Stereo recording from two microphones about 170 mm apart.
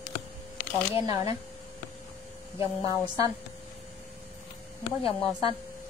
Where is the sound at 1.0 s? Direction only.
20° right (ahead or behind).